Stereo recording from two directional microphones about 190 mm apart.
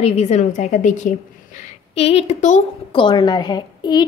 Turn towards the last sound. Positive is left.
turn(degrees=20)  # may be behind; listen again after turning